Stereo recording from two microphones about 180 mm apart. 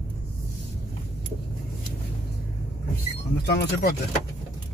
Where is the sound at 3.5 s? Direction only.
65° left (ahead or behind).